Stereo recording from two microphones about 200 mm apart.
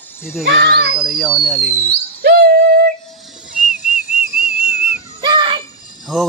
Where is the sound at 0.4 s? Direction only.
55° right (ahead or behind).